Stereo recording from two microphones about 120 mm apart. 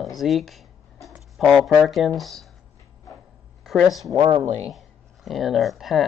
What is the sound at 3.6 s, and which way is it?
Speech, centre (ahead or behind).